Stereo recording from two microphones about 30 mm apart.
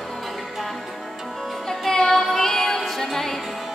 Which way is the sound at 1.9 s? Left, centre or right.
Centre.